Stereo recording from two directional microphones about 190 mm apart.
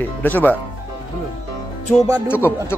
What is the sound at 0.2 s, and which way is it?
Speech, 10° left (ahead or behind).